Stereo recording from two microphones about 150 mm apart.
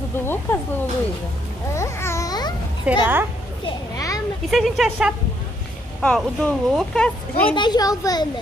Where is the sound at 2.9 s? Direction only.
10° right (ahead or behind).